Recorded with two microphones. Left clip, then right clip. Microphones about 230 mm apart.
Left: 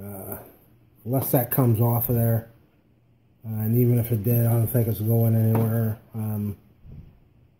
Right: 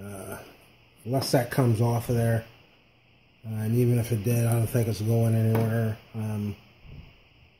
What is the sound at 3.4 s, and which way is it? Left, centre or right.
Speech, centre.